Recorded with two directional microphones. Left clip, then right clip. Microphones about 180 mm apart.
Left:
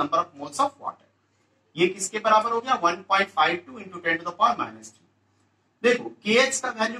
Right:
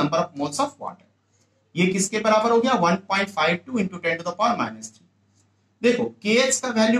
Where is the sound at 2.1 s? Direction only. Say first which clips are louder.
Right 3 dB; 20° right (ahead or behind).